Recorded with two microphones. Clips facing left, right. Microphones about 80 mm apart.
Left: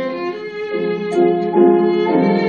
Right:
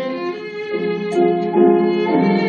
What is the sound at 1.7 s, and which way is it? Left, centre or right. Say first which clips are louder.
Music: left 1 dB; left.